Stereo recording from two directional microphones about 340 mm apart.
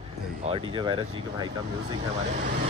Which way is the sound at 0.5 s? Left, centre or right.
Centre.